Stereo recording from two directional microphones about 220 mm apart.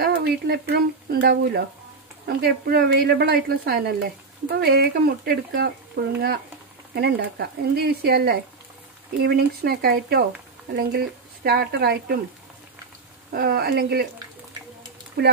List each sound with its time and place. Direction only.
0.0 s a woman's voice: 45° right (ahead or behind)
13.3 s a woman's voice: 45° right (ahead or behind)